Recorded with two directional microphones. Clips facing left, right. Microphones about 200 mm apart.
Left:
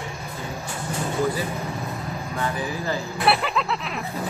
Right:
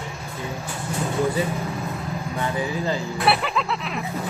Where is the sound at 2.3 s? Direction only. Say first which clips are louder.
Right 2 dB; 20° right (ahead or behind).